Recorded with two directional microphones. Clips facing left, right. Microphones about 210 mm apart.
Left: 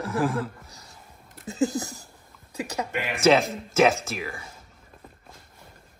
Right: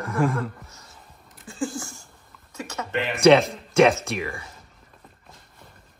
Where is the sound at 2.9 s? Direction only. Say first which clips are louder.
Right 5 dB; 10° left (ahead or behind).